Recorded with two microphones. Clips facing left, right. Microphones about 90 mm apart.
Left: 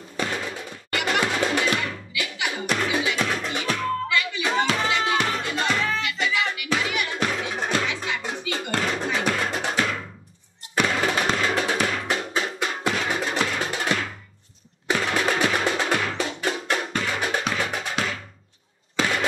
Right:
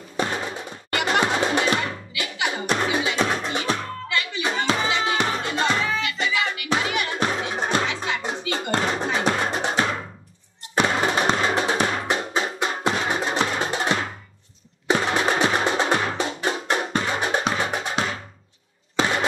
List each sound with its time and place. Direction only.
0.2 s music: 25° right (ahead or behind)
5.8 s music: 5° right (ahead or behind)
6.1 s music: 30° right (ahead or behind)
14.9 s percussion: 25° right (ahead or behind)
18.9 s a sound: 30° right (ahead or behind)